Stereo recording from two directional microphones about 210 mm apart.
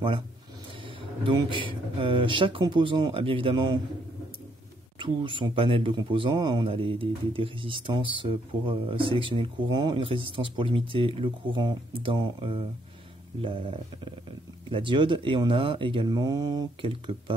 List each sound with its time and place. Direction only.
1.2 s a man's voice: 25° right (ahead or behind)
4.9 s a man's voice: 25° right (ahead or behind)